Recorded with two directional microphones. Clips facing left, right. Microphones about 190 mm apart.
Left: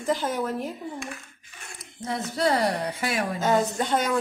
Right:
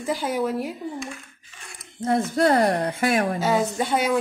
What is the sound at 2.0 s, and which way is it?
Speech, 50° right (ahead or behind).